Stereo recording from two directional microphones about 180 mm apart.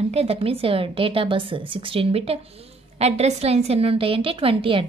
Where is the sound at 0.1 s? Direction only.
35° right (ahead or behind).